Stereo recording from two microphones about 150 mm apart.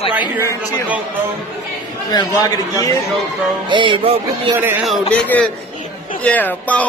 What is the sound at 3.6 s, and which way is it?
Speech, 35° right (ahead or behind).